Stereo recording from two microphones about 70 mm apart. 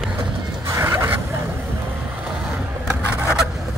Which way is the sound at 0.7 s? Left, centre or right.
Right.